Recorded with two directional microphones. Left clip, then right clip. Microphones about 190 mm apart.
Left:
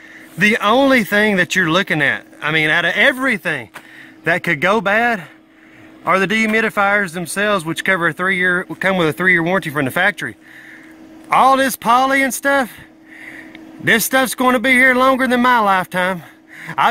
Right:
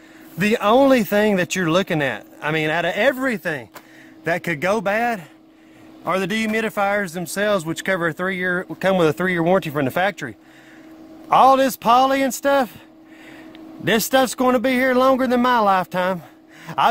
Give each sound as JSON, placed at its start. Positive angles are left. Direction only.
{"t": 0.4, "sound": "speech", "side_deg": -5}
{"t": 4.2, "sound": "a man's voice", "side_deg": 10}
{"t": 13.8, "sound": "speech", "side_deg": -5}